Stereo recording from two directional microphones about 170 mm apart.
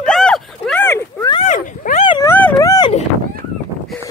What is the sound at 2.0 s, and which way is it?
Dog, 30° left (ahead or behind).